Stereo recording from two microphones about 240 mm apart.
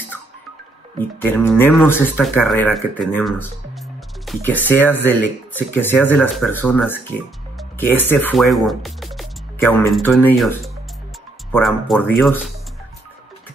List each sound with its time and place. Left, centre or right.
0.9 s speech: centre